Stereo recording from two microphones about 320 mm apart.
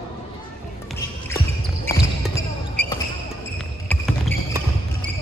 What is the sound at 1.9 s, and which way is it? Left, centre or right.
Basketball bounce, centre.